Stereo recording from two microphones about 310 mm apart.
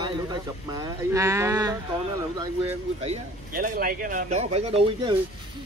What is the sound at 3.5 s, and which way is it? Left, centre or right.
Speech, right.